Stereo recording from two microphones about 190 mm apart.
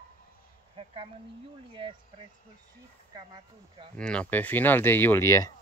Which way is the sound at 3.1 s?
20° right (ahead or behind).